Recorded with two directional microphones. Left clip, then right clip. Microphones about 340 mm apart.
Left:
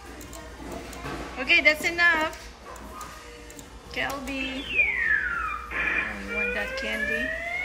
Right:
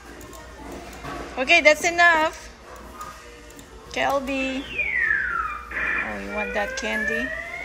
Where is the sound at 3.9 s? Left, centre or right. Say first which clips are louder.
Right 7 dB; centre.